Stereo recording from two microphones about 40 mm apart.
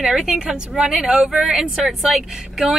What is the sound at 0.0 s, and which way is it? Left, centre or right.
Speech, centre.